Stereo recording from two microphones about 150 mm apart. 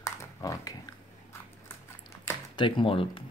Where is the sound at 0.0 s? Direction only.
20° left (ahead or behind).